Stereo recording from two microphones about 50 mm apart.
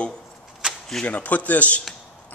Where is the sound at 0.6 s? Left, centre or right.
Centre.